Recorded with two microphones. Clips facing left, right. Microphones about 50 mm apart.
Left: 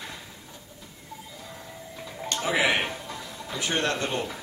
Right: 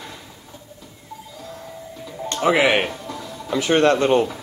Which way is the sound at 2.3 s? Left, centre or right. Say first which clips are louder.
Right 9 dB; right.